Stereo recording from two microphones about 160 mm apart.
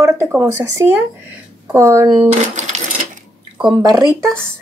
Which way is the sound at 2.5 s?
50° right (ahead or behind).